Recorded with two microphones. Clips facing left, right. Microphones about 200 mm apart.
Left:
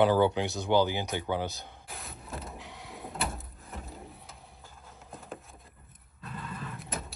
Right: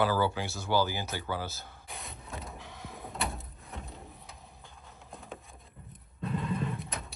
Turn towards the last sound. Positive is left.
turn(degrees=0)  # may be behind; listen again after turning